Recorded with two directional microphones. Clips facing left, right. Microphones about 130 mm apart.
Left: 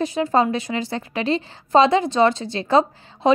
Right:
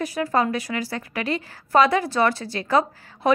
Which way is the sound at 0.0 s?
25° left (ahead or behind).